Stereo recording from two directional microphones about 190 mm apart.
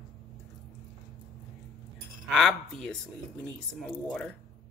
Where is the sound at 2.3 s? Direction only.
Centre (ahead or behind).